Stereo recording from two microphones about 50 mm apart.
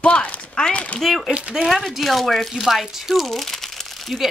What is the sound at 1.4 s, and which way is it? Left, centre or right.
Speech, right.